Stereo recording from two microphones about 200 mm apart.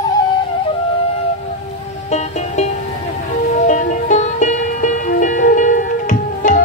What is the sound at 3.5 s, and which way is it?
Music, 40° left (ahead or behind).